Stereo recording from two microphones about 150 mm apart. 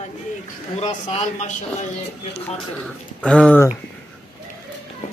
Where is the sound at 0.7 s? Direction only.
45° left (ahead or behind).